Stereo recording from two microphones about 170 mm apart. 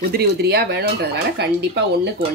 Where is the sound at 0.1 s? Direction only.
70° right (ahead or behind).